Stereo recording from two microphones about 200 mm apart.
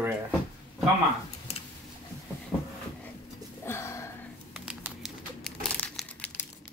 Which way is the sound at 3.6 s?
15° left (ahead or behind).